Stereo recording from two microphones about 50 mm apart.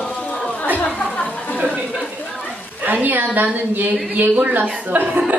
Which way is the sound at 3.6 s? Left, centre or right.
Right.